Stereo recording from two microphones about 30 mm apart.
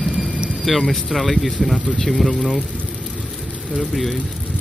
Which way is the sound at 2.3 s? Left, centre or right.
Left.